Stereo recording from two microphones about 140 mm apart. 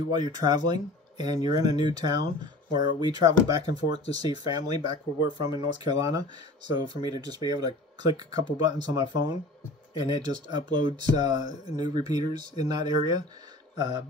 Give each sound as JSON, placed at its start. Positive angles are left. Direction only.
{"t": 0.1, "sound": "speech", "side_deg": -30}